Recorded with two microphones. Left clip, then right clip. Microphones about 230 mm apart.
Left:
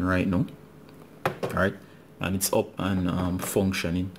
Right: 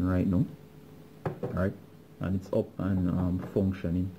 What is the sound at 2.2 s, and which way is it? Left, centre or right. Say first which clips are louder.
Speech: left 5 dB; centre.